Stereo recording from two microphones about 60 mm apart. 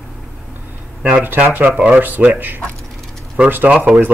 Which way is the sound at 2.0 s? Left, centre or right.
Right.